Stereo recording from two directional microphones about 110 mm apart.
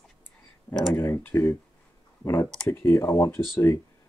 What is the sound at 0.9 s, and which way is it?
Speech, 20° left (ahead or behind).